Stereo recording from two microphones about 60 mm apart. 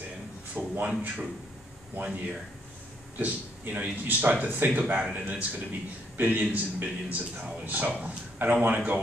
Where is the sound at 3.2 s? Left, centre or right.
Right.